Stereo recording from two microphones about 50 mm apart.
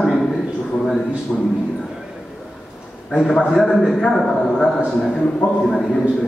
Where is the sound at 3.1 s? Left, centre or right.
Centre.